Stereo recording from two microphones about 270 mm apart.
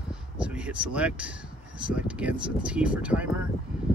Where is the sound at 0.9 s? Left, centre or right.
Centre.